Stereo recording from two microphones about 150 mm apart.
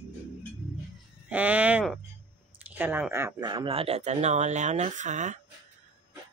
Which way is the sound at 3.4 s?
35° right (ahead or behind).